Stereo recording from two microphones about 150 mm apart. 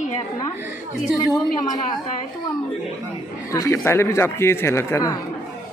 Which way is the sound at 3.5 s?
20° left (ahead or behind).